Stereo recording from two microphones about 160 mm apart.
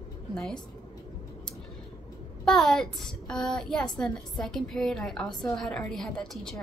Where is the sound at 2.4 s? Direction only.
5° left (ahead or behind).